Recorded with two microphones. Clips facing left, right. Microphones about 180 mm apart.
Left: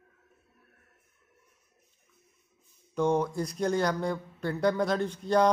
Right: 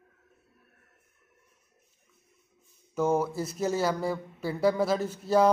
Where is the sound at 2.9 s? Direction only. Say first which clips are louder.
Even; 5° right (ahead or behind).